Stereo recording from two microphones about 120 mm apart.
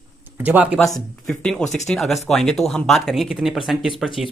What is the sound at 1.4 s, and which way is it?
Speech, 5° left (ahead or behind).